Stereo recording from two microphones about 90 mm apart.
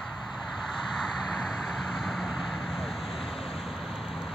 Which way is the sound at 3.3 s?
90° left.